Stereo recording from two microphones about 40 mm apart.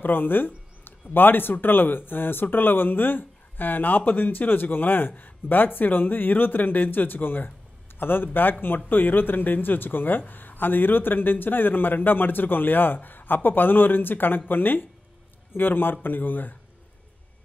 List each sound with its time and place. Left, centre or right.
0.0 s speech: left